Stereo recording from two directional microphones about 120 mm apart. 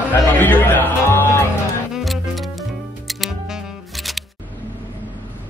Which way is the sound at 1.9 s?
Centre (ahead or behind).